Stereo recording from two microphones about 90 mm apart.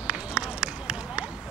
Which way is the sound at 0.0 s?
10° right (ahead or behind).